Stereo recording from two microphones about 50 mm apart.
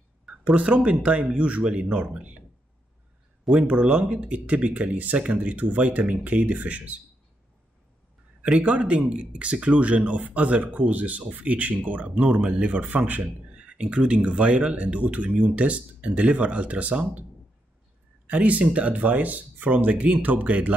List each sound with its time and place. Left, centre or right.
0.2 s speech: right
3.6 s speech: right
8.4 s speech: right
18.2 s speech: right